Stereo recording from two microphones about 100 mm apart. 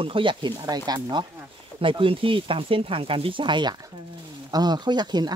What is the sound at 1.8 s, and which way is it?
Speech, 60° right (ahead or behind).